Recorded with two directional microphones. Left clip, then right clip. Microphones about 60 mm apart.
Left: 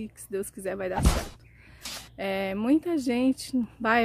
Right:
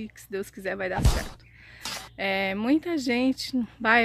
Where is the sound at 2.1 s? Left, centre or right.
Centre.